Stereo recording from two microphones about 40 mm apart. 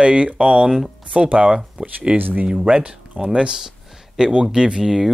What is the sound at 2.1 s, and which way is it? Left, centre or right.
Speech, right.